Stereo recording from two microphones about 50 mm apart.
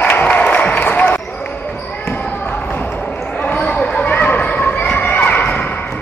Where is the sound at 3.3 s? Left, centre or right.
Left.